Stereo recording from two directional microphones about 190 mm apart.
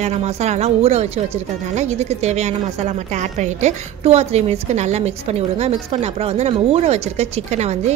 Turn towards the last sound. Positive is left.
turn(degrees=-35)  # may be behind; listen again after turning